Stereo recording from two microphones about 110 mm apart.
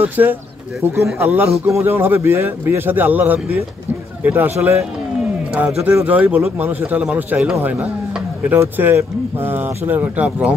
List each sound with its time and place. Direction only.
0.0 s a man's voice: 15° right (ahead or behind)